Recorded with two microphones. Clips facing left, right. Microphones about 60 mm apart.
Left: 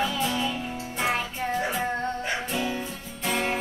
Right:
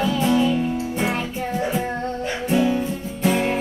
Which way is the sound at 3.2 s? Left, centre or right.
Centre.